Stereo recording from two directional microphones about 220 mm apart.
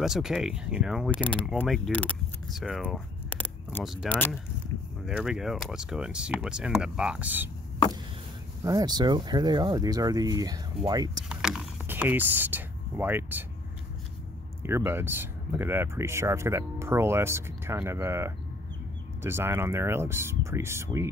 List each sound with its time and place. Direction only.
0.0 s speech: centre (ahead or behind)
8.6 s speech: 15° right (ahead or behind)
11.2 s speech: 5° right (ahead or behind)
14.6 s speech: 10° right (ahead or behind)